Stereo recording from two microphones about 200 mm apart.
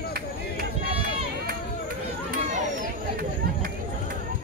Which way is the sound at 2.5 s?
40° right (ahead or behind).